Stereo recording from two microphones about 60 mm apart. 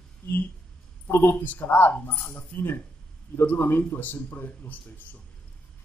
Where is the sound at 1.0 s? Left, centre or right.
Left.